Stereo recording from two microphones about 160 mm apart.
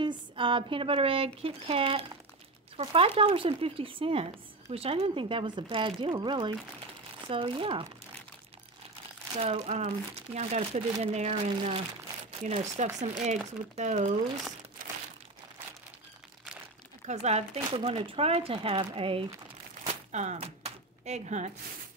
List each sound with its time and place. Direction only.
0.0 s speech: 30° right (ahead or behind)
9.3 s speech: 40° right (ahead or behind)
17.0 s speech: 45° right (ahead or behind)
17.6 s speech: 30° right (ahead or behind)
19.8 s a sound: 45° right (ahead or behind)